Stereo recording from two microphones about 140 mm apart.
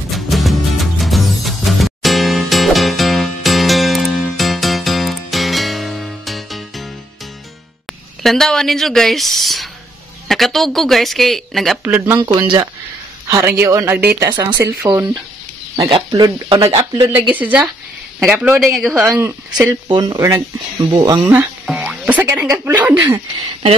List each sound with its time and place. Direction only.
0.1 s music: centre (ahead or behind)
8.2 s speech: 5° left (ahead or behind)
11.8 s speech: 15° right (ahead or behind)
13.3 s speech: 20° right (ahead or behind)
15.9 s speech: 35° right (ahead or behind)
17.1 s speech: 10° right (ahead or behind)
18.9 s speech: 20° right (ahead or behind)
19.7 s speech: 30° right (ahead or behind)
21.6 s speech: 5° right (ahead or behind)